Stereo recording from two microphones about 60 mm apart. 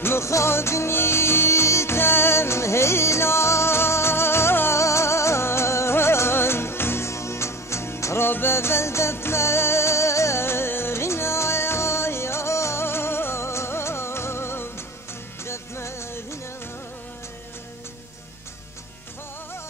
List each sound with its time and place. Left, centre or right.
0.0 s music: left